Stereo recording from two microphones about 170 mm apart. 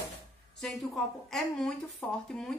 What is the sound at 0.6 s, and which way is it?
Speech, centre (ahead or behind).